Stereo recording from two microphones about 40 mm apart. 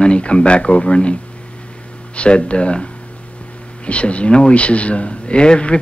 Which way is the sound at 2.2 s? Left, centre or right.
Left.